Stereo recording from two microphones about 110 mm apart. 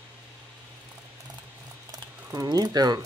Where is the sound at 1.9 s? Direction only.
35° right (ahead or behind).